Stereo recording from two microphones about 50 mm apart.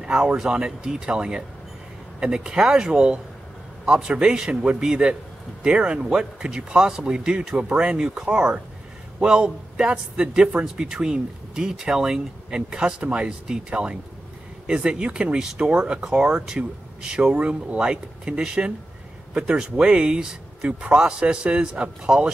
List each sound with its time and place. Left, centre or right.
0.0 s speech: centre
15.7 s speech: right